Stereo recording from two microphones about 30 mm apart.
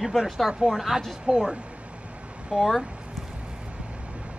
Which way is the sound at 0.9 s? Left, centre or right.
Centre.